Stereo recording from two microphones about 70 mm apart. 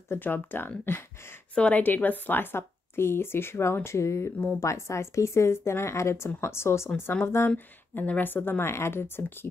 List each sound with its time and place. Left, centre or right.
0.1 s a woman's voice: left
1.5 s a woman's voice: centre; by 9.5 s left